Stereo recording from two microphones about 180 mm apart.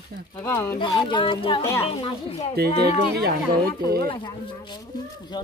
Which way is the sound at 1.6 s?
15° left (ahead or behind).